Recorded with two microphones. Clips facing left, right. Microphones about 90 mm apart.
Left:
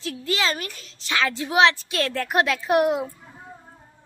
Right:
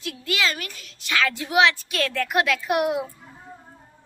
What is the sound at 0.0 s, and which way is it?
A woman's voice, 30° left (ahead or behind).